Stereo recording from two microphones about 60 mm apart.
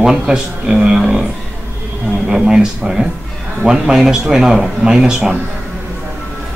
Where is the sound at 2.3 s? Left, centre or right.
Centre.